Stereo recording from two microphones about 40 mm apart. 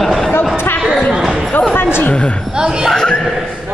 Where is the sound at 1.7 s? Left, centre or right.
Left.